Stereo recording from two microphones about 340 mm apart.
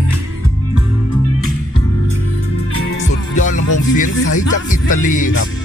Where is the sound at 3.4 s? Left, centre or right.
Left.